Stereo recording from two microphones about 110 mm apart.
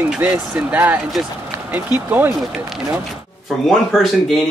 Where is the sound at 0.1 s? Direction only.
15° right (ahead or behind).